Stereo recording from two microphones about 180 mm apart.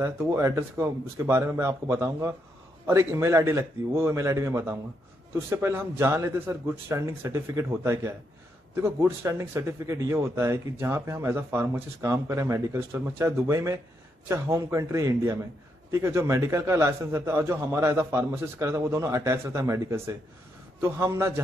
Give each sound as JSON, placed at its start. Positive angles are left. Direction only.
{"t": 0.0, "sound": "speech", "side_deg": -15}